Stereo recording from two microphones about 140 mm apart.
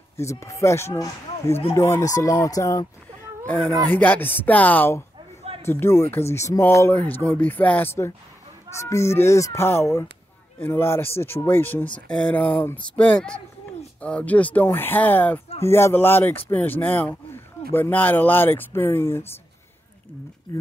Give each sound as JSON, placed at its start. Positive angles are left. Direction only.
{"t": 0.2, "sound": "speech", "side_deg": 20}
{"t": 3.4, "sound": "speech", "side_deg": 10}